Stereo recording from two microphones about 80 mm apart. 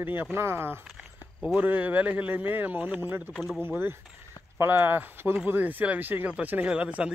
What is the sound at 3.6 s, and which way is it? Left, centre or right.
Speech, right.